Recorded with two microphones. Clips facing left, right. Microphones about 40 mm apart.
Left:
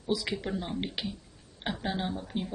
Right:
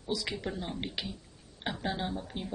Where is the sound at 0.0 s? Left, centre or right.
Centre.